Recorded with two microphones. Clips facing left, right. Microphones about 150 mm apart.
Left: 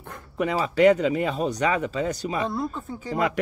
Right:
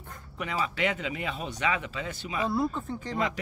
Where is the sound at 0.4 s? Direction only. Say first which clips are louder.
Left 10 dB; 40° left (ahead or behind).